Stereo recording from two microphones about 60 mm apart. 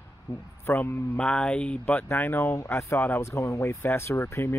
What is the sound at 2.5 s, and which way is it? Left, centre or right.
Speech, left.